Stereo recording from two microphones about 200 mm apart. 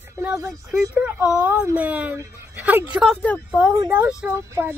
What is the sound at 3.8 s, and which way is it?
Speech, 10° right (ahead or behind).